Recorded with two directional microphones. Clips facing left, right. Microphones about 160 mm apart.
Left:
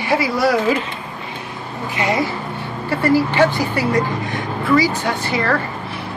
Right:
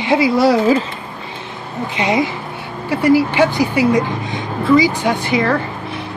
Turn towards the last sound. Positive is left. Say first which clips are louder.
# right 3 dB
turn(degrees=-15)  # may be behind; listen again after turning